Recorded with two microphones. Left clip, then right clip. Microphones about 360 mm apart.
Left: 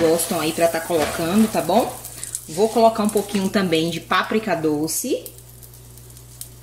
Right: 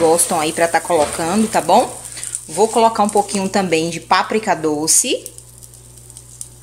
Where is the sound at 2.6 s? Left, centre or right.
Right.